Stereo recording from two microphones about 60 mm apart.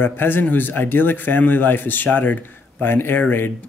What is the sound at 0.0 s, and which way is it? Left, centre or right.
Speech, left.